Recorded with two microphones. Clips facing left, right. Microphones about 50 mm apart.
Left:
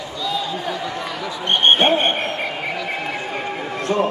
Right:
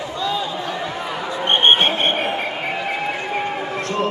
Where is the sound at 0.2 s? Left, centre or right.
Right.